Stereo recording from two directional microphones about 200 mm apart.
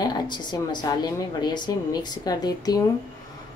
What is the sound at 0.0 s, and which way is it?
A woman's voice, 20° left (ahead or behind).